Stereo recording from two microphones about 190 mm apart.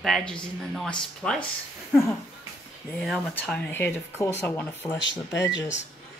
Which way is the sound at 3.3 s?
5° left (ahead or behind).